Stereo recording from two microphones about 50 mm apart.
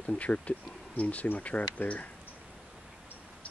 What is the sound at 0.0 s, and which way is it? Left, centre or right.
Speech, left.